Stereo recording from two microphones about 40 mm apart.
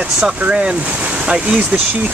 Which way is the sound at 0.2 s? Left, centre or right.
Right.